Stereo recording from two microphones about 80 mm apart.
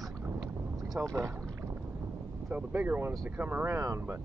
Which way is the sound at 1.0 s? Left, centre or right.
Right.